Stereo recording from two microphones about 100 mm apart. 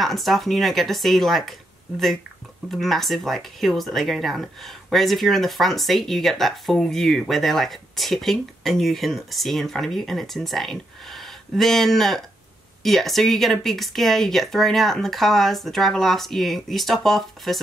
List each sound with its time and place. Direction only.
0.0 s speech: centre (ahead or behind)
2.7 s speech: centre (ahead or behind)